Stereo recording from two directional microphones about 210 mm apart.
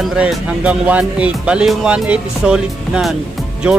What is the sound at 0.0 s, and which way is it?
Speech, centre (ahead or behind).